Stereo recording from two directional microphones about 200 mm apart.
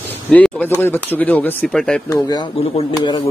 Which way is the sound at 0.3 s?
5° left (ahead or behind).